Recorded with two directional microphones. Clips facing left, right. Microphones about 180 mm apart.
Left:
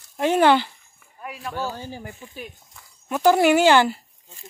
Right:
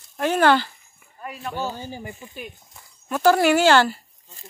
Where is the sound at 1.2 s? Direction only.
5° left (ahead or behind).